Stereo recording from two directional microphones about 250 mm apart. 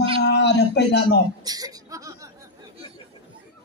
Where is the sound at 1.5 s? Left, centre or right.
Centre.